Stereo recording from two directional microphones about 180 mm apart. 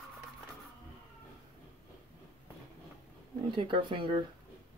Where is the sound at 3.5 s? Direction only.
25° right (ahead or behind).